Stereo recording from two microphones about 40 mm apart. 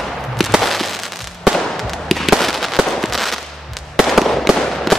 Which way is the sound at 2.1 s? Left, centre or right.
Centre.